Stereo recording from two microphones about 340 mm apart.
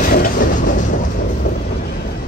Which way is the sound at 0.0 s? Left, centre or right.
Left.